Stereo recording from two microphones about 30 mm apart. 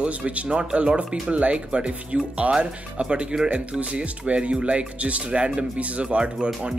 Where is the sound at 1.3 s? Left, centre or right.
Right.